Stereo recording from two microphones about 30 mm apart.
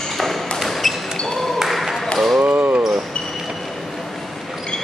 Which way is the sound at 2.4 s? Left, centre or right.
Right.